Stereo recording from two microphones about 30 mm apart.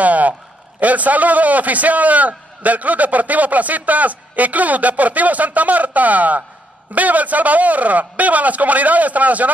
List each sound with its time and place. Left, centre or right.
0.0 s a man's voice: right